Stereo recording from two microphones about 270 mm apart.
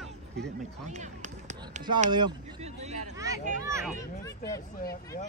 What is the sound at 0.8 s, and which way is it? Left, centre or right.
Speech, right.